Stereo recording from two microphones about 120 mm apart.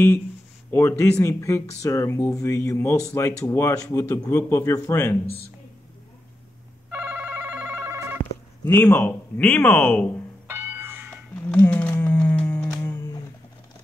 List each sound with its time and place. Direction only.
0.7 s speech: 20° left (ahead or behind)
6.9 s telephone bell ringing: 15° right (ahead or behind)
8.6 s speech: 20° left (ahead or behind)
10.5 s music: 15° right (ahead or behind)
11.4 s a sound: 15° left (ahead or behind)
12.7 s music: 25° left (ahead or behind)